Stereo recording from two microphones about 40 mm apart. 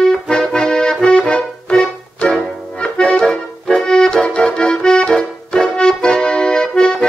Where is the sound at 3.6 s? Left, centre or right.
Centre.